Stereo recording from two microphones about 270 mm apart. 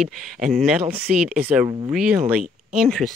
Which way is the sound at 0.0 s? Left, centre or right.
Centre.